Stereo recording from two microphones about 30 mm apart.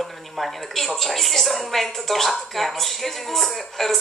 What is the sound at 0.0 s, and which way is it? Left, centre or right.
A woman's voice, centre.